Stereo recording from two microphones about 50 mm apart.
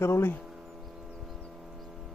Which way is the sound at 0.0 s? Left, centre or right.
Left.